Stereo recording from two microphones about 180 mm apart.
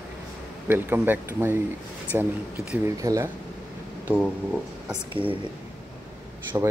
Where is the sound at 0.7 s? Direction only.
10° right (ahead or behind).